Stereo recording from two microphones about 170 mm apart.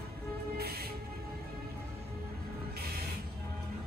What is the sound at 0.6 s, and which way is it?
Music, 65° right (ahead or behind).